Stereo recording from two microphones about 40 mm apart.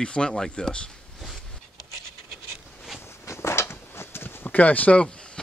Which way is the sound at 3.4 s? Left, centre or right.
Left.